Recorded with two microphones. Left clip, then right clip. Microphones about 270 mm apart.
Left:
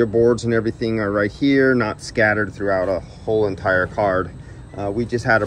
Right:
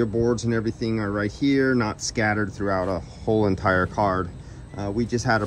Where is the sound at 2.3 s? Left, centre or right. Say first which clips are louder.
Left 5 dB; centre.